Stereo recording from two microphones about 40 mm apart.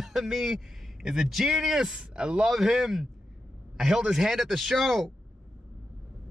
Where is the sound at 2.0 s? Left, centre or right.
Right.